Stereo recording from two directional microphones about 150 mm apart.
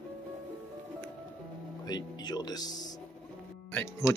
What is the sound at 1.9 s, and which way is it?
Speech, 25° left (ahead or behind).